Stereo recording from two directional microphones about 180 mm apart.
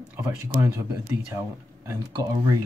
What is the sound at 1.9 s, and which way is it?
Speech, 20° right (ahead or behind).